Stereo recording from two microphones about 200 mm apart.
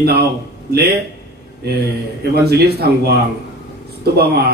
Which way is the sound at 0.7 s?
50° right (ahead or behind).